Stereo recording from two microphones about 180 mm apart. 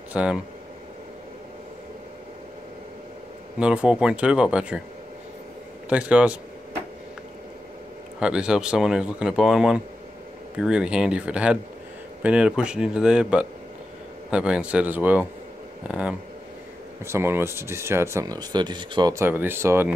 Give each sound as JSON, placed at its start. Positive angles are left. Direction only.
{"t": 0.1, "sound": "speech", "side_deg": -5}
{"t": 3.5, "sound": "speech", "side_deg": -5}
{"t": 5.9, "sound": "speech", "side_deg": -5}
{"t": 8.2, "sound": "speech", "side_deg": -5}